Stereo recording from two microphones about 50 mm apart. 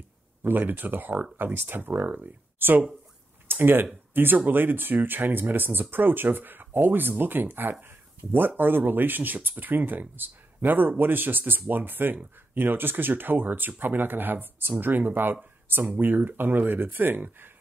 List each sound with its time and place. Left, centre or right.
0.4 s speech: right
2.6 s speech: right